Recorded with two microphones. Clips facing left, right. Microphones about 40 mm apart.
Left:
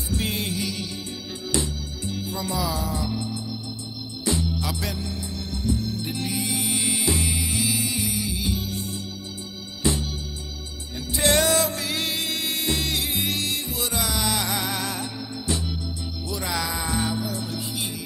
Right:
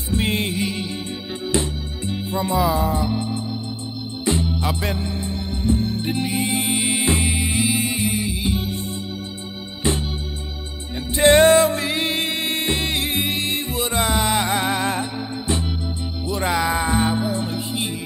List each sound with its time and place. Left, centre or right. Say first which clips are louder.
0.1 s music: right 6 dB; right
9.8 s organ: right 2 dB; right
11.1 s music: right 8 dB; right